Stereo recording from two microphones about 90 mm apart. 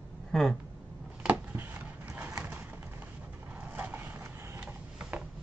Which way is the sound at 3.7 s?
20° right (ahead or behind).